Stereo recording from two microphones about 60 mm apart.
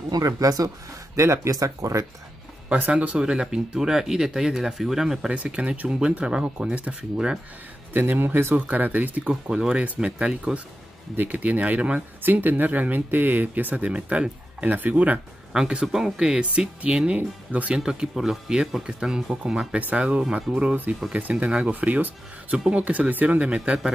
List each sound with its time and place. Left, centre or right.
0.1 s speech: right
1.1 s speech: right
1.6 s speech: right
2.7 s speech: right; by 5.3 s centre
5.3 s speech: right
7.9 s speech: right
8.5 s speech: right
9.3 s speech: centre
11.1 s speech: right
12.2 s speech: right
15.5 s speech: centre